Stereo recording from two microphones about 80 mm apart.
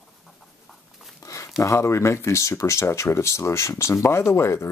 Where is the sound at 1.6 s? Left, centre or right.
Left.